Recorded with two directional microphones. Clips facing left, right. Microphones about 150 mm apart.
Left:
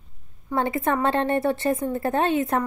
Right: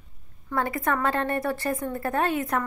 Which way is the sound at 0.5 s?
25° left (ahead or behind).